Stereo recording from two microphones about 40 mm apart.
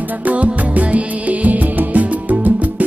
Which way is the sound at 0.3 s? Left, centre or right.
Right.